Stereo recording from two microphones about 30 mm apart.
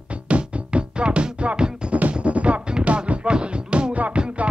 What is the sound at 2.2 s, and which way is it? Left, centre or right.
Music, right.